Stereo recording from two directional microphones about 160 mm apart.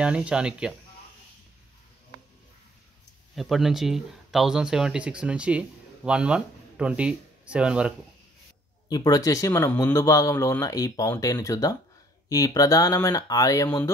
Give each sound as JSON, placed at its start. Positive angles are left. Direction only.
{"t": 0.0, "sound": "speech", "side_deg": -5}
{"t": 3.3, "sound": "speech", "side_deg": 0}
{"t": 8.8, "sound": "a man's voice", "side_deg": 25}